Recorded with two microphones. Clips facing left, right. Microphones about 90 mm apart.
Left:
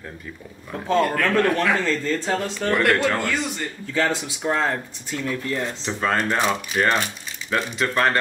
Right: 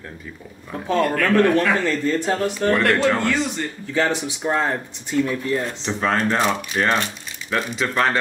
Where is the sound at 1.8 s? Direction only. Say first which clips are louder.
Right 3 dB; 15° right (ahead or behind).